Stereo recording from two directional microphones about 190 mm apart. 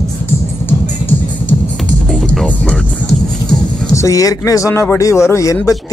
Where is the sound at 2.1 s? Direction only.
5° left (ahead or behind).